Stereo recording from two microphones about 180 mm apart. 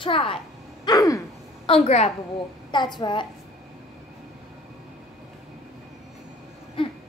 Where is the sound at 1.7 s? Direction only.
35° left (ahead or behind).